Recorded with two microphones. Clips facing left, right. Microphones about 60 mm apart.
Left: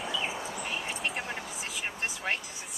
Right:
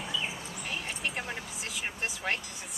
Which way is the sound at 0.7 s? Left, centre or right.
Centre.